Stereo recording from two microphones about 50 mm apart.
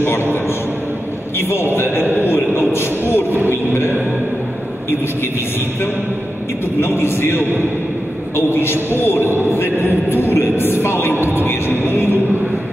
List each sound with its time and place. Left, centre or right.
2.2 s a sound: left
6.8 s a woman's voice: left
8.5 s a woman's voice: left
11.4 s a woman's voice: left